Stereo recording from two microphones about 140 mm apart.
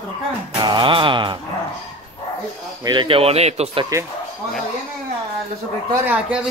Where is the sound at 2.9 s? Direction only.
35° right (ahead or behind).